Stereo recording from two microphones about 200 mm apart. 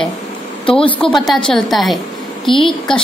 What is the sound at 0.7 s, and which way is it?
Speech, 25° left (ahead or behind).